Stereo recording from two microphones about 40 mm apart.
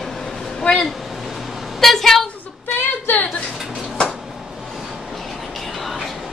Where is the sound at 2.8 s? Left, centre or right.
Left.